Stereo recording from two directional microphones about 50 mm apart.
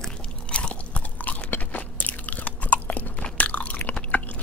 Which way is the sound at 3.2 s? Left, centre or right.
Left.